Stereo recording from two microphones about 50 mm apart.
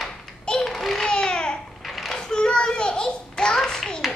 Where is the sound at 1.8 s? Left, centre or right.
Centre.